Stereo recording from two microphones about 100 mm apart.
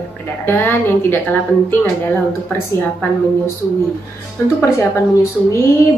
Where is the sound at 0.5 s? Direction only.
20° left (ahead or behind).